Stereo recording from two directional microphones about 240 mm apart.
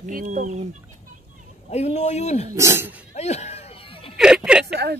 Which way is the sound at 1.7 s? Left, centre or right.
Left.